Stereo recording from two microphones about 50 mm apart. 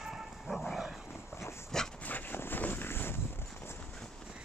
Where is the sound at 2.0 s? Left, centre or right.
Left.